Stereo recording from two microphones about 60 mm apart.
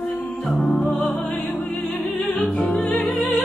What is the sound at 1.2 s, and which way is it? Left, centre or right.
Music, centre.